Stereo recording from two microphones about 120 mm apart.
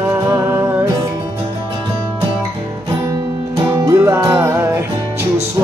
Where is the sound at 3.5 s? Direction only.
25° right (ahead or behind).